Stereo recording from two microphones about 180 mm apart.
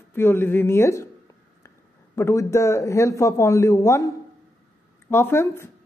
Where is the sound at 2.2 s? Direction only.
15° left (ahead or behind).